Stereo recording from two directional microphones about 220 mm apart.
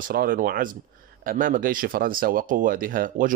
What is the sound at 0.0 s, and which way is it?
Speech, 40° right (ahead or behind).